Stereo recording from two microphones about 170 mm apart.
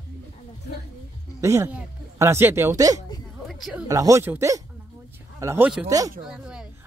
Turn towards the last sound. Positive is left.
turn(degrees=-5)  # may be behind; listen again after turning